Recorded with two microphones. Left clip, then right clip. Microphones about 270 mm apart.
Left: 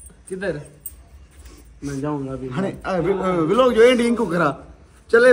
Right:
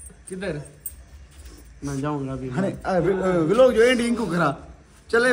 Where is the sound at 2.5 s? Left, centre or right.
Left.